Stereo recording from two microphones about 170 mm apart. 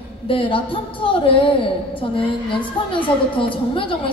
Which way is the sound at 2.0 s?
30° left (ahead or behind).